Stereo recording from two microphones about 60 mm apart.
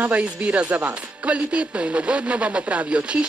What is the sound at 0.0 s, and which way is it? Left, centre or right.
Speech, right.